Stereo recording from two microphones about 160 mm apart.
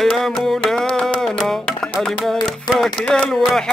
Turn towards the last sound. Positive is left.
turn(degrees=5)  # may be behind; listen again after turning